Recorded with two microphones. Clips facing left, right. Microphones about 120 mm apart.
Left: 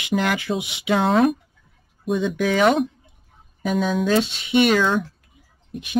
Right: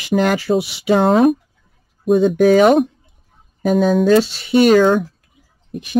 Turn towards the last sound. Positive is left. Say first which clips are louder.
# right 5 dB
turn(degrees=-40)  # may be behind; listen again after turning